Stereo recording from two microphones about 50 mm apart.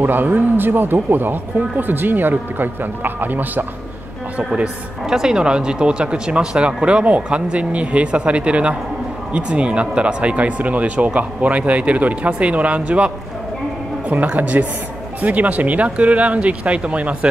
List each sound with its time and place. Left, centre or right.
0.0 s speech: right
5.0 s speech: centre